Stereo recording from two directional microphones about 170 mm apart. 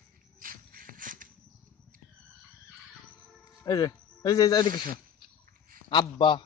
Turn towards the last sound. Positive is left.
turn(degrees=30)  # may be behind; listen again after turning